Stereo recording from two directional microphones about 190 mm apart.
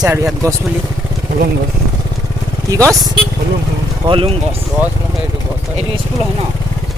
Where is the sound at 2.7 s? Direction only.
15° right (ahead or behind).